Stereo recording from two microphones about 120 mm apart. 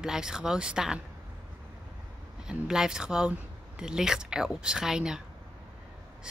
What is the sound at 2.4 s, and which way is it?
Speech, 5° right (ahead or behind).